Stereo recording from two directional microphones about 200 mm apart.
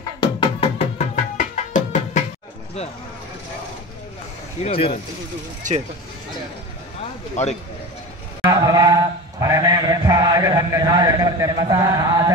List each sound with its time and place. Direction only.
0.2 s music: 30° left (ahead or behind)
4.6 s speech: 30° left (ahead or behind)
5.6 s speech: 40° right (ahead or behind)
7.4 s speech: 35° left (ahead or behind)
8.5 s mantra: 20° right (ahead or behind)